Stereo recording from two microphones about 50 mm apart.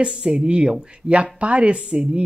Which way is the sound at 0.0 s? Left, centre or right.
Centre.